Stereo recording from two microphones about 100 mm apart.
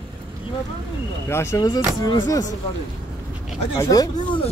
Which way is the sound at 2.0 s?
40° left (ahead or behind).